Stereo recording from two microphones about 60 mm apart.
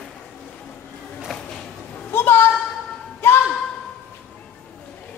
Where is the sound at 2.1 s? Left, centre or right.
Left.